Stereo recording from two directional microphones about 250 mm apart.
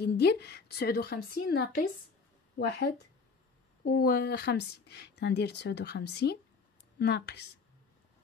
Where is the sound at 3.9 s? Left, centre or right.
Left.